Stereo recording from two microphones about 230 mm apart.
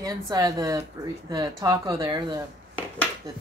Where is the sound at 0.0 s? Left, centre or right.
Centre.